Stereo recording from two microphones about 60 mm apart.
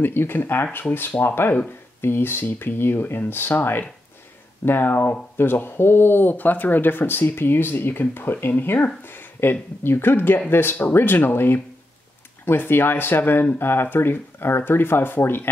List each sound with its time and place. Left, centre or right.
0.0 s speech: left